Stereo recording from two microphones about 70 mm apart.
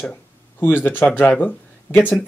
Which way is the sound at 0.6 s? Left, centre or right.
Left.